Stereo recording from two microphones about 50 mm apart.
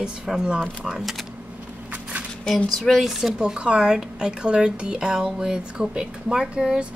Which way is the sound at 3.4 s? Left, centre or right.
Right.